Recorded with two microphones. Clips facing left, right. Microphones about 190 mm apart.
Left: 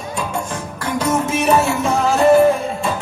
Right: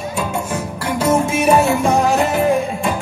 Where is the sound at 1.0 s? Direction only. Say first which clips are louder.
Right 3 dB; 10° right (ahead or behind).